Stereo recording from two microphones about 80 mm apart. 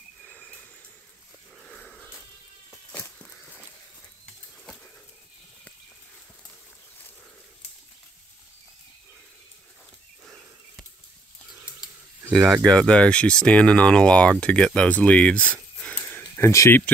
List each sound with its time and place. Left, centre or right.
1.7 s wheeze: centre
12.3 s speech: centre
12.6 s speech: centre
14.4 s a sound: centre
16.4 s speech: left